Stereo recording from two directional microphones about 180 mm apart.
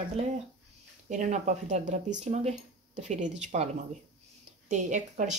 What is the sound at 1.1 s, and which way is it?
Speech, 45° right (ahead or behind).